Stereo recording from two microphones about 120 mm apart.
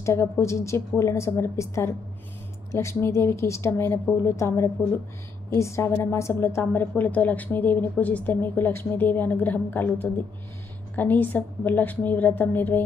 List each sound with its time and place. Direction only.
0.0 s a woman's voice: 25° left (ahead or behind)